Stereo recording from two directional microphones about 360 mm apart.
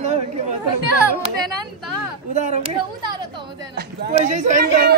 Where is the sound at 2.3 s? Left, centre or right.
Centre.